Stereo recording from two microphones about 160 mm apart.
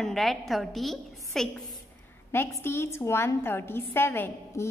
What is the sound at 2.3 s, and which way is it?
A woman's voice, 15° left (ahead or behind).